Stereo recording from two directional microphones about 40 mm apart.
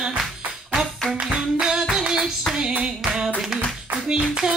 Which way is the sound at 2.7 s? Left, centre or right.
Right.